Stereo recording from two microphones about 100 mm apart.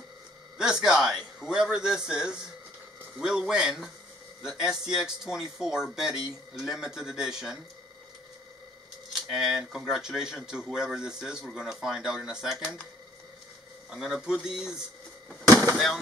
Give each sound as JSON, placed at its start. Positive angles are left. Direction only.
{"t": 0.6, "sound": "a man's voice", "side_deg": -5}
{"t": 9.3, "sound": "speech", "side_deg": -5}
{"t": 13.8, "sound": "speech", "side_deg": 0}
{"t": 15.4, "sound": "a sound", "side_deg": -30}
{"t": 15.7, "sound": "speech", "side_deg": 0}